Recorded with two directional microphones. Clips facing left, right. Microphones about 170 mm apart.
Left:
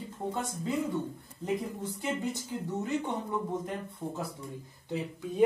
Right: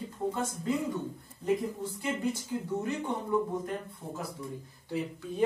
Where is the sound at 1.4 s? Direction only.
20° left (ahead or behind).